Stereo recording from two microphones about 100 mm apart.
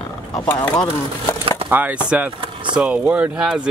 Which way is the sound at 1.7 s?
20° right (ahead or behind).